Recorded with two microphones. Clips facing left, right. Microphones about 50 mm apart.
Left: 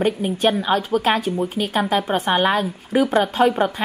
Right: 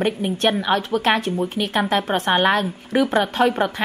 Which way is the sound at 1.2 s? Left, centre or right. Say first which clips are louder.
Even; centre.